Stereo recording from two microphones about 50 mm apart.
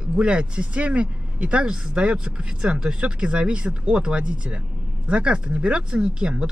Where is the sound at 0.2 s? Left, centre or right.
Centre.